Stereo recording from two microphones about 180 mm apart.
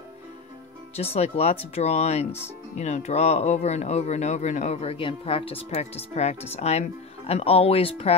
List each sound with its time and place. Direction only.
1.1 s speech: 35° left (ahead or behind)